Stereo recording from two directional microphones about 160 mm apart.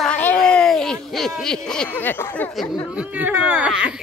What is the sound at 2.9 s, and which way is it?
Speech, 10° right (ahead or behind).